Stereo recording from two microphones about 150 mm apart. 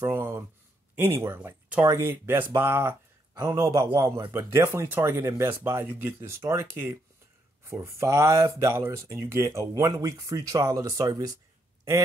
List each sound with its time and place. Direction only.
0.0 s speech: 15° right (ahead or behind)